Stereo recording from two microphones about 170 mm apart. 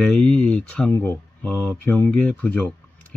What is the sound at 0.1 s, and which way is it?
Speech, 5° left (ahead or behind).